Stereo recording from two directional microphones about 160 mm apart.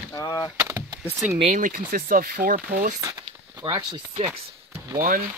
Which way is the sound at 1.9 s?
65° right (ahead or behind).